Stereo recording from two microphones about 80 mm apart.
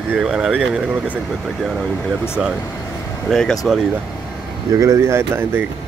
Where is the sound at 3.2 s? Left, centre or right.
Centre.